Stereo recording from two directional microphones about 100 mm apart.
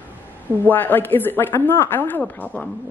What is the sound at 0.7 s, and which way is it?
A woman's voice, 20° left (ahead or behind).